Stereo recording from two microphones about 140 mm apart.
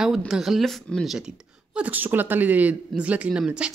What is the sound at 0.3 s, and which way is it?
Speech, centre (ahead or behind).